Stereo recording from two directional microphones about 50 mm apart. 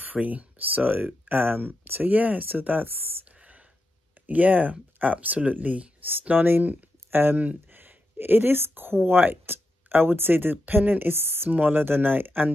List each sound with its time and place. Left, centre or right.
0.0 s speech: right
3.3 s a sound: right
4.3 s speech: right
6.4 s speech: right